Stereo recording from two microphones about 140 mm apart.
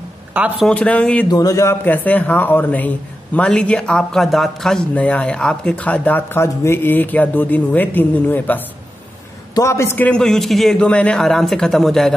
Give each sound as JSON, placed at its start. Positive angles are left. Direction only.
{"t": 0.3, "sound": "a man's voice", "side_deg": -10}
{"t": 0.7, "sound": "a man's voice", "side_deg": 10}
{"t": 1.3, "sound": "a man's voice", "side_deg": 25}